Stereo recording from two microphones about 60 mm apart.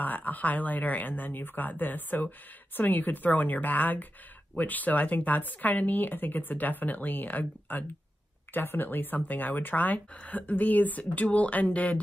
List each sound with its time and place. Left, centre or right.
0.0 s speech: left